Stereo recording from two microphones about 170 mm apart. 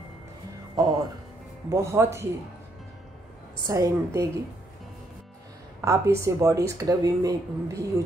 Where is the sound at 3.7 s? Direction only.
20° right (ahead or behind).